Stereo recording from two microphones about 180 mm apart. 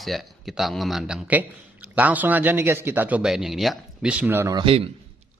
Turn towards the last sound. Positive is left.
turn(degrees=-30)  # may be behind; listen again after turning